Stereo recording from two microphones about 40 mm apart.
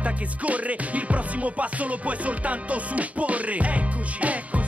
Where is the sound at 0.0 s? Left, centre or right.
Right.